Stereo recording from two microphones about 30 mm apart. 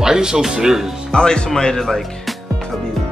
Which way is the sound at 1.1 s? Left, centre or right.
Left.